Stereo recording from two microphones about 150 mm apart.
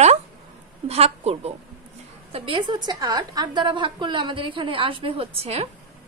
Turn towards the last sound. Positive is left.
turn(degrees=-45)  # may be behind; listen again after turning